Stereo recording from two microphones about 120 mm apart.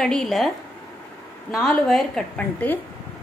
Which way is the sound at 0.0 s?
5° left (ahead or behind).